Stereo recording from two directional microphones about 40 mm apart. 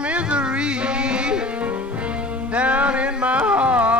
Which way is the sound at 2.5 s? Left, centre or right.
Right.